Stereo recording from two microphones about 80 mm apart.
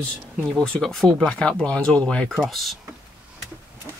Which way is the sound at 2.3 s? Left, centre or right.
Centre.